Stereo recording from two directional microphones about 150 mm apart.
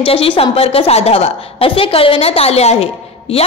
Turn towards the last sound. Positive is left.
turn(degrees=40)  # may be behind; listen again after turning